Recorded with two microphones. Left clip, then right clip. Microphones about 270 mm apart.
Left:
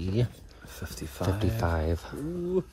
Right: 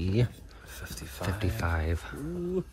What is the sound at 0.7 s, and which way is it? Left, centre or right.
Speech, left.